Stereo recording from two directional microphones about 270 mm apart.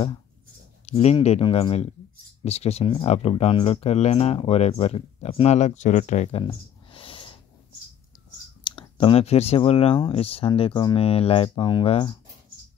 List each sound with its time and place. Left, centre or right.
0.8 s speech: left
8.6 s speech: centre